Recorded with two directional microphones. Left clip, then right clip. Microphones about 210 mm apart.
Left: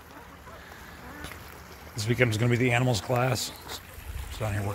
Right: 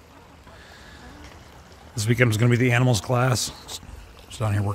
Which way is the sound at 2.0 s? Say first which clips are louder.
Right 4 dB; 40° right (ahead or behind).